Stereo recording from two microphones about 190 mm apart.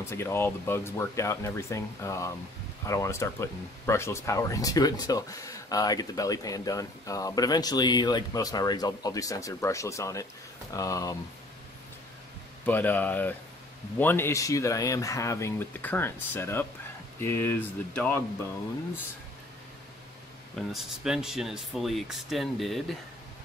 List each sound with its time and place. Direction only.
0.1 s speech: 15° left (ahead or behind)
12.6 s speech: 10° left (ahead or behind)
20.5 s speech: centre (ahead or behind)